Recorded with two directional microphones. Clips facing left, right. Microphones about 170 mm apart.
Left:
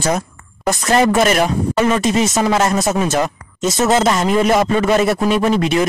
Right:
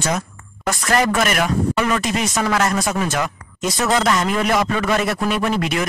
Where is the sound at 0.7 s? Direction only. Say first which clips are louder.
Left 4 dB; 25° left (ahead or behind).